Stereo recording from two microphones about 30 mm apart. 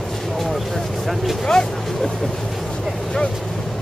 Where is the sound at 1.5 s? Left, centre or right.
Left.